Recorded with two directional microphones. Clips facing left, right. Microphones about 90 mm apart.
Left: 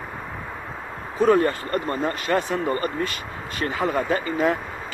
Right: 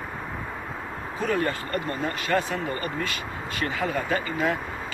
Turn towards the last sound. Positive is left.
turn(degrees=35)  # may be behind; listen again after turning